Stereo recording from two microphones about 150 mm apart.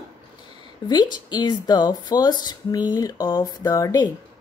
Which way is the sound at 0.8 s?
30° left (ahead or behind).